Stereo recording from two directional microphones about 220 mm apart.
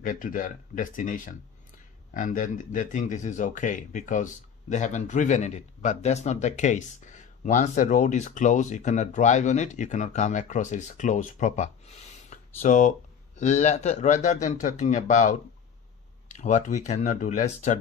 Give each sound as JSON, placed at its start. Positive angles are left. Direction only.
{"t": 0.0, "sound": "speech", "side_deg": 40}